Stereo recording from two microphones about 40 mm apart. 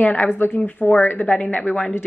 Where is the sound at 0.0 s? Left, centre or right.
Left.